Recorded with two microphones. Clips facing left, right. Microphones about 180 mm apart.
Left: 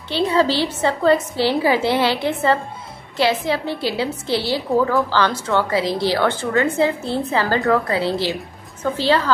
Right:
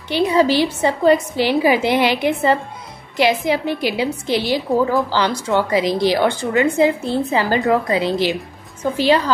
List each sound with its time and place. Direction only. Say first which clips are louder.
0.1 s a woman's voice: right 3 dB; 15° right (ahead or behind)